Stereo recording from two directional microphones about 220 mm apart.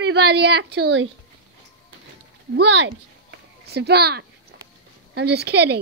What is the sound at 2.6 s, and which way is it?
A woman's voice, 55° right (ahead or behind).